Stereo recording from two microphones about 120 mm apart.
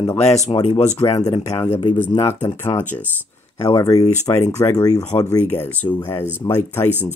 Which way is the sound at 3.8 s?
30° left (ahead or behind).